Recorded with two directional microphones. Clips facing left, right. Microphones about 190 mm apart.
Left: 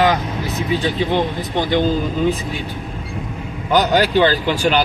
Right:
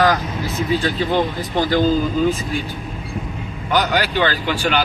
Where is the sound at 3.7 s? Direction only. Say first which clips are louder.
Left 4 dB; 40° left (ahead or behind).